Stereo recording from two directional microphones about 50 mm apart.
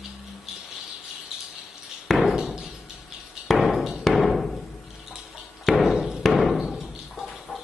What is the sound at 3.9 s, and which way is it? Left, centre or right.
Hammer, centre.